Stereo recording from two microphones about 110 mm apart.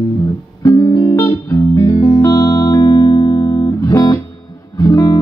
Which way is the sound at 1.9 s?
55° left (ahead or behind).